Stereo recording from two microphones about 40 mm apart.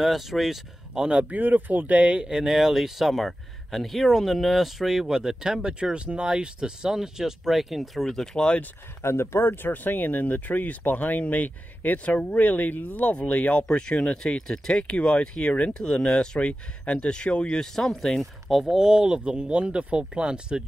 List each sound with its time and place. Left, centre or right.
0.0 s speech: centre
0.9 s speech: right
1.3 s speech: right
2.2 s speech: centre
8.2 s speech: centre
9.0 s speech: left
12.2 s speech: left
12.4 s speech: left
13.2 s speech: left
15.7 s speech: left
16.3 s speech: left
17.6 s speech: centre
18.5 s speech: centre
18.8 s speech: centre